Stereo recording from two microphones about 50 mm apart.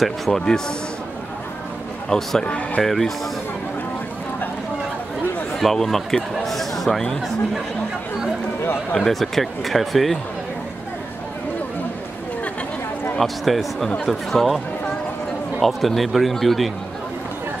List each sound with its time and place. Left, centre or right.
0.0 s speech: centre
2.0 s a man's voice: centre
2.4 s speech: left
2.8 s speech: centre
5.6 s speech: centre
8.9 s speech: centre
13.2 s speech: centre
15.6 s speech: centre